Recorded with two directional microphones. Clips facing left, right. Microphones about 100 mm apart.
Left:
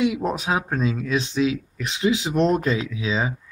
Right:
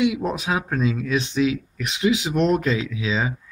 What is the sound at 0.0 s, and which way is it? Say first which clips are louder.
Speech: even; 30° left (ahead or behind).